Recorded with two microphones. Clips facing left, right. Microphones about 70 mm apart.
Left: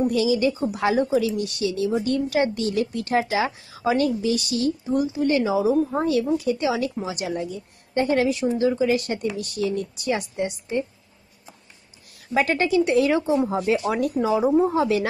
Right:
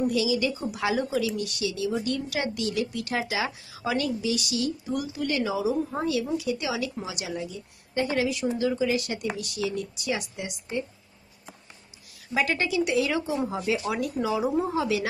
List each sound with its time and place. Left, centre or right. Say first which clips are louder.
0.0 s speech: left 5 dB; left
4.8 s speech: left 7 dB; left
12.4 s speech: left 5 dB; left